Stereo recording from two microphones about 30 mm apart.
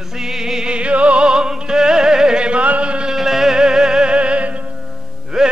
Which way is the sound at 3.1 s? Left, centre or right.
Centre.